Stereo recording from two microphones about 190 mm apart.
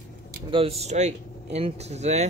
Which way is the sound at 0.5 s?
30° right (ahead or behind).